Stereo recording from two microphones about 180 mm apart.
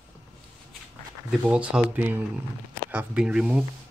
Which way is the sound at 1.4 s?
5° right (ahead or behind).